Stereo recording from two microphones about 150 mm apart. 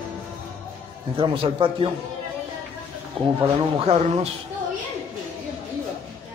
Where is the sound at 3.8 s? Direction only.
45° right (ahead or behind).